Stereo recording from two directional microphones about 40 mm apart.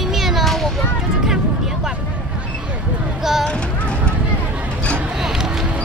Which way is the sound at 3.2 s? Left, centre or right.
Centre.